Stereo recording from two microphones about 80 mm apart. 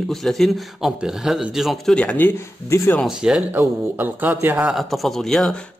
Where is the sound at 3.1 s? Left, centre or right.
Centre.